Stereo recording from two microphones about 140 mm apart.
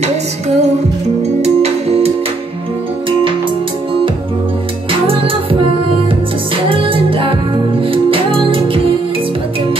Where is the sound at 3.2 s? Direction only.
35° right (ahead or behind).